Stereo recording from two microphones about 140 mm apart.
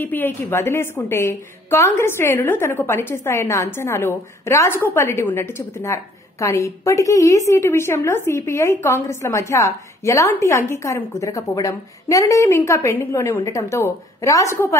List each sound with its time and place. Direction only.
0.0 s a woman's voice: 15° left (ahead or behind)